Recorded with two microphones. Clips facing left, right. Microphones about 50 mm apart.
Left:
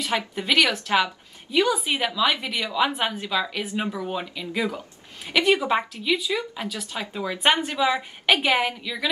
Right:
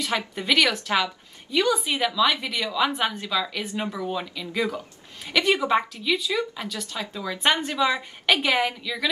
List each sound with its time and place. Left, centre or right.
0.0 s a woman's voice: centre
7.0 s speech: left
7.8 s a woman's voice: centre